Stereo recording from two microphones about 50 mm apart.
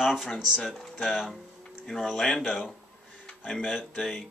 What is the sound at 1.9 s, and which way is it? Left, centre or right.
Speech, centre.